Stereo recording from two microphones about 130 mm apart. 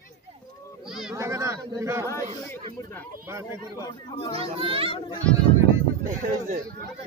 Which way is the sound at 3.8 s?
30° left (ahead or behind).